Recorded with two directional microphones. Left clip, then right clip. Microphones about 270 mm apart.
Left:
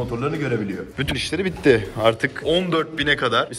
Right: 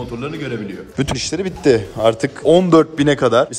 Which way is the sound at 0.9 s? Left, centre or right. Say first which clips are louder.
Right 4 dB; centre.